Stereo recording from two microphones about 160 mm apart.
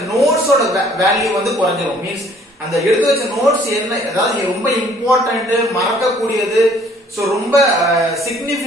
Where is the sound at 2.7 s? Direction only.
Centre (ahead or behind).